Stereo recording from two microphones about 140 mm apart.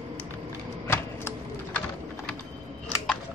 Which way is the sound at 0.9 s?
15° left (ahead or behind).